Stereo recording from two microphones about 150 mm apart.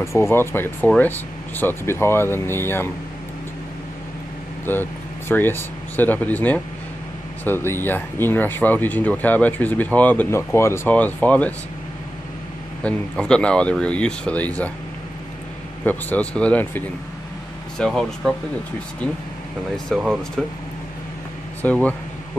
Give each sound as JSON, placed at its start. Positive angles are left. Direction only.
{"t": 0.0, "sound": "speech", "side_deg": 20}
{"t": 4.7, "sound": "speech", "side_deg": 15}
{"t": 12.8, "sound": "speech", "side_deg": 5}
{"t": 15.8, "sound": "speech", "side_deg": 10}
{"t": 19.9, "sound": "speech", "side_deg": 0}
{"t": 21.6, "sound": "speech", "side_deg": 10}